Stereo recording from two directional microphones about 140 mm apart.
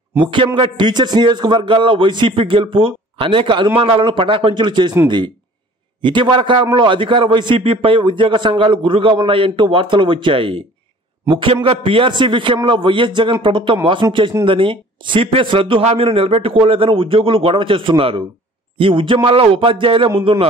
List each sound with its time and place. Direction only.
0.2 s a man's voice: 35° right (ahead or behind)